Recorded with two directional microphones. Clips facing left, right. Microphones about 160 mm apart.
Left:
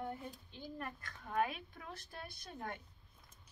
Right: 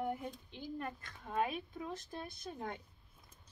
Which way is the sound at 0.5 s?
20° right (ahead or behind).